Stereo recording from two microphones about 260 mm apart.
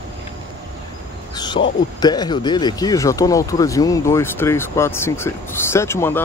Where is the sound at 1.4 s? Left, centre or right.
Centre.